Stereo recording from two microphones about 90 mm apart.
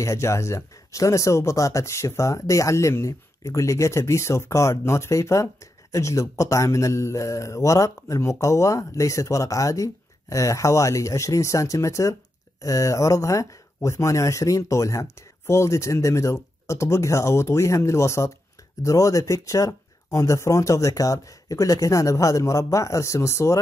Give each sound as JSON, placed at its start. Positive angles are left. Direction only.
{"t": 0.0, "sound": "speech", "side_deg": 30}